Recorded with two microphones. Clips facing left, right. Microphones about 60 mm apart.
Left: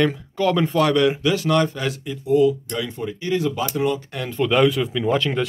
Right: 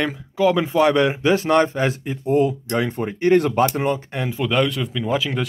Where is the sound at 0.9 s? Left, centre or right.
Right.